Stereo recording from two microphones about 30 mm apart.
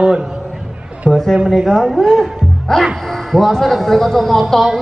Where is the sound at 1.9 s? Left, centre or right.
Centre.